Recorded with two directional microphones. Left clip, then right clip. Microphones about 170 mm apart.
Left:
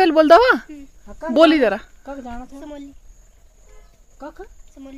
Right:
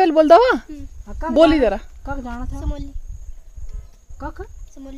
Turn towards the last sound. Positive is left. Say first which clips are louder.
# right 3 dB
turn(degrees=-45)  # may be behind; listen again after turning